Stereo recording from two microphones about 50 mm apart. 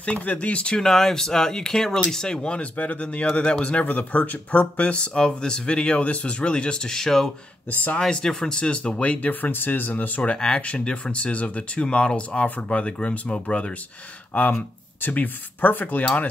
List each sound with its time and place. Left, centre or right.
0.0 s speech: left
0.7 s speech: centre
2.8 s speech: left
3.8 s speech: left
9.3 s speech: left
10.3 s speech: left
14.3 s speech: left